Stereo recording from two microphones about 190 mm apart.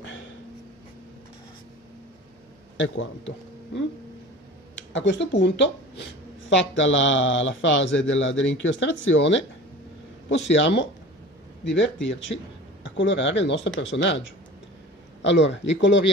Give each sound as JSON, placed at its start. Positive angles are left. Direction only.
{"t": 2.8, "sound": "speech", "side_deg": 80}
{"t": 4.9, "sound": "speech", "side_deg": 70}
{"t": 6.5, "sound": "speech", "side_deg": 75}
{"t": 10.5, "sound": "speech", "side_deg": 70}
{"t": 15.2, "sound": "speech", "side_deg": 70}